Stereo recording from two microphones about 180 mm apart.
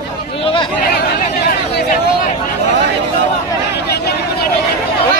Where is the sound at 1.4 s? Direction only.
55° left (ahead or behind).